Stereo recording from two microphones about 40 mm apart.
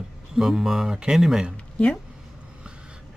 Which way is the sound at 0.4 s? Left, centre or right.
Centre.